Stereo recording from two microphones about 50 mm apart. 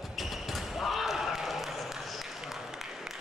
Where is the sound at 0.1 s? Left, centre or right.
Centre.